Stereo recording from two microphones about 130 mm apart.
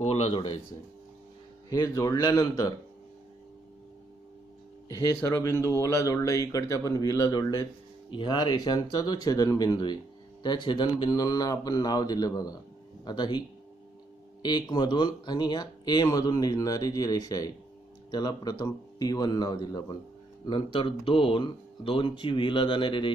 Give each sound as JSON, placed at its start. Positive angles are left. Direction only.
{"t": 0.0, "sound": "a sound", "side_deg": 50}
{"t": 1.7, "sound": "speech", "side_deg": 25}
{"t": 5.3, "sound": "speech", "side_deg": 25}
{"t": 14.4, "sound": "speech", "side_deg": 35}
{"t": 20.4, "sound": "speech", "side_deg": 40}